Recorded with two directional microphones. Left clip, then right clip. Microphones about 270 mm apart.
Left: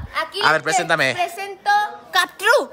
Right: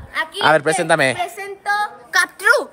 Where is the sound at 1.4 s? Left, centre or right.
Centre.